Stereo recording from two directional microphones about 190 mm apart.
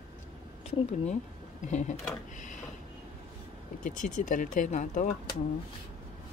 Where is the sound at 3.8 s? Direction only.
40° left (ahead or behind).